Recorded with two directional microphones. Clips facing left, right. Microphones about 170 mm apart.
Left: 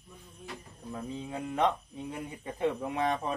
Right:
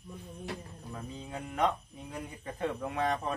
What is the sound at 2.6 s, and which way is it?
Speech, 15° left (ahead or behind).